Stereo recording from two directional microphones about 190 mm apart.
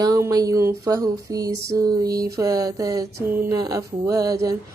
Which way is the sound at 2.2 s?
20° right (ahead or behind).